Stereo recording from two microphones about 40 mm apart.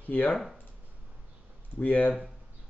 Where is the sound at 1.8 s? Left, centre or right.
Left.